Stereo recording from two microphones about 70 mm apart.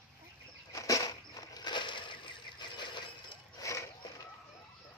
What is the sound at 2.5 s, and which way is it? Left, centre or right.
Breaking, left.